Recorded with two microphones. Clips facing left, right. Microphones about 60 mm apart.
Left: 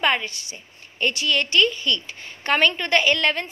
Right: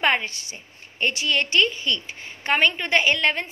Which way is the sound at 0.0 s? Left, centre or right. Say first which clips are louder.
Even; right.